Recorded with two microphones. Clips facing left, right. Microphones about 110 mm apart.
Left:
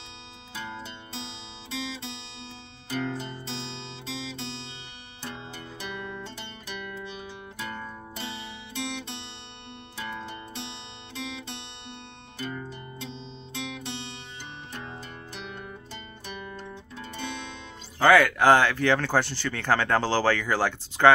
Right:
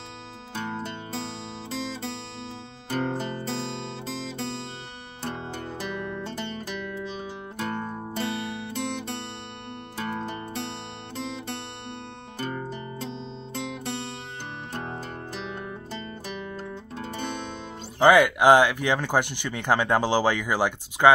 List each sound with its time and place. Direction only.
0.6 s music: 50° right (ahead or behind)
2.9 s music: 50° right (ahead or behind)
7.5 s music: 45° right (ahead or behind)
12.4 s music: 45° right (ahead or behind)
14.7 s music: 55° right (ahead or behind)
17.0 s music: 45° right (ahead or behind)
17.9 s speech: 15° right (ahead or behind)